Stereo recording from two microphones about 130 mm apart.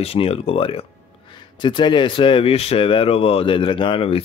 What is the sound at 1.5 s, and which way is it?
Speech, 35° left (ahead or behind).